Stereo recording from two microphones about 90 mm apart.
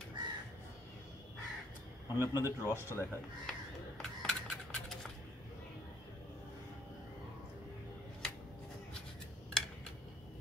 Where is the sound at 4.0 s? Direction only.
10° left (ahead or behind).